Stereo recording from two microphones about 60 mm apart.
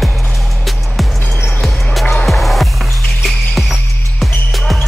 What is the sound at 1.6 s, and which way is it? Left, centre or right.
Basketball bounce, centre.